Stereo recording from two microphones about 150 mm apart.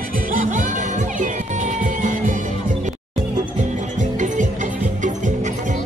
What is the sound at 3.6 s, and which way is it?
Music, 55° right (ahead or behind).